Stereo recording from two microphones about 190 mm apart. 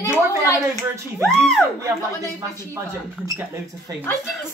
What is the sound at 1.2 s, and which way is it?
Speech, centre (ahead or behind).